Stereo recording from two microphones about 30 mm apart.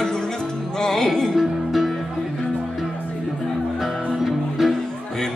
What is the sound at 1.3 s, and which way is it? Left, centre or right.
Music, centre.